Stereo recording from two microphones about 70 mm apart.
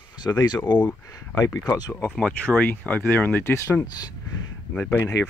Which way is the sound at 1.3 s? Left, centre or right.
Left.